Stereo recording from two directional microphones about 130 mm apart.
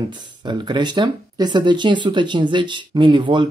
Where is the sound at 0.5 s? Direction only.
35° right (ahead or behind).